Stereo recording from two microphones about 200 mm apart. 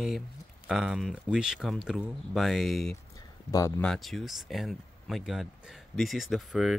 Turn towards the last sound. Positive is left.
turn(degrees=0)  # may be behind; listen again after turning